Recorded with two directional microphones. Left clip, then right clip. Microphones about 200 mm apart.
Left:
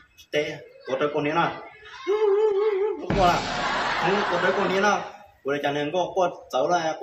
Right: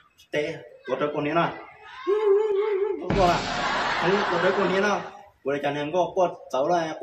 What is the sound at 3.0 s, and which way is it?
Speech, centre (ahead or behind).